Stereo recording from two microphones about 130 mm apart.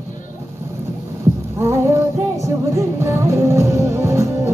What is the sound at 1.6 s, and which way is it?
Music, 20° right (ahead or behind).